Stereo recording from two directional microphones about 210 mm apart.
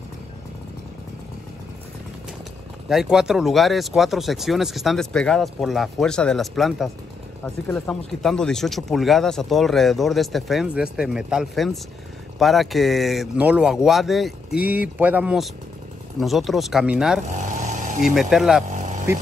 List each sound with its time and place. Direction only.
2.9 s speech: centre (ahead or behind)
17.3 s vehicle: 35° right (ahead or behind)
18.0 s speech: centre (ahead or behind)
18.7 s vehicle: 35° right (ahead or behind)